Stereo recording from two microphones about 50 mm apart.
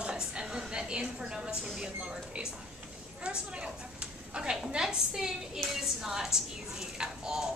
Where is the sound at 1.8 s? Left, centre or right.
Centre.